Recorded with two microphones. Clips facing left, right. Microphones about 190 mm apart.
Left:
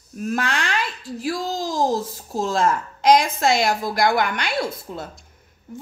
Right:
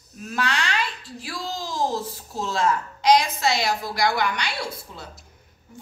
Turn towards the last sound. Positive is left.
turn(degrees=50)  # may be behind; listen again after turning